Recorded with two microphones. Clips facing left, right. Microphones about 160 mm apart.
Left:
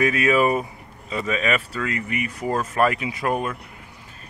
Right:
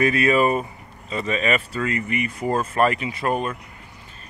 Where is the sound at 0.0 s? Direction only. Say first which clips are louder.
Right 1 dB; 5° left (ahead or behind).